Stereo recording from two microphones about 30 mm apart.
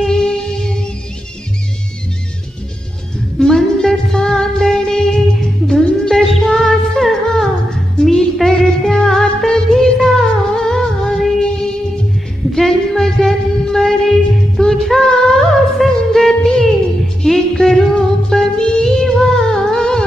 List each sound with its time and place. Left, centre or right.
0.0 s music: centre
3.3 s music: centre
12.5 s music: centre
15.0 s music: left
15.3 s music: centre